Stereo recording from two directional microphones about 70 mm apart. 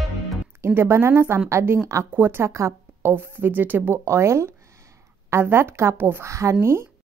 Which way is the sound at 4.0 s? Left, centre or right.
Right.